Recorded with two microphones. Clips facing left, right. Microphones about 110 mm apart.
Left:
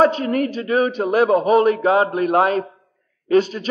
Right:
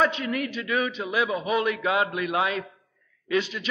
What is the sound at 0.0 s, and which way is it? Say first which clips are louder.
A man's voice: left 8 dB; 40° left (ahead or behind).